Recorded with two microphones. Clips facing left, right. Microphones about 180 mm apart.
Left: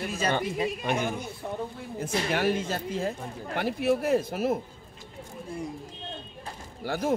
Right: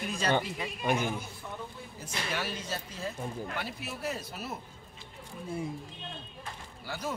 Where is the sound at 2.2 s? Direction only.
55° left (ahead or behind).